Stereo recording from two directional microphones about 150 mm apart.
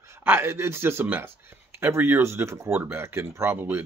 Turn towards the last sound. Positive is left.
turn(degrees=-15)  # may be behind; listen again after turning